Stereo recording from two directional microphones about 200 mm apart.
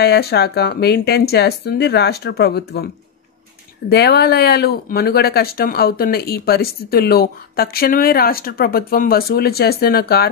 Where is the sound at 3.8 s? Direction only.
55° left (ahead or behind).